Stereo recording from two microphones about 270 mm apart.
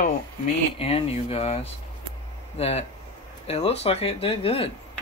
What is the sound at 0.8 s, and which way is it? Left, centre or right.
Speech, left.